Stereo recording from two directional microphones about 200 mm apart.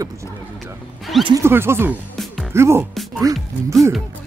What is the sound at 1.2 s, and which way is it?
Speech, 15° right (ahead or behind).